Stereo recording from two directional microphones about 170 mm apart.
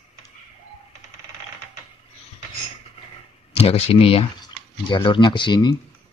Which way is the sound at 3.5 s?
35° left (ahead or behind).